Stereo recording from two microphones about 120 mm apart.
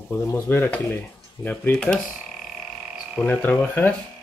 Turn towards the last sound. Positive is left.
turn(degrees=15)  # may be behind; listen again after turning